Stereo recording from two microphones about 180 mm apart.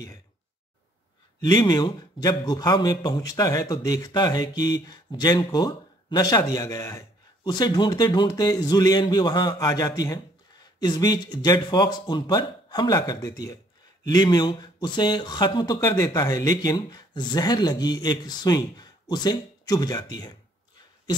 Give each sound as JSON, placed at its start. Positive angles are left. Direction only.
{"t": 1.4, "sound": "a man's voice", "side_deg": 20}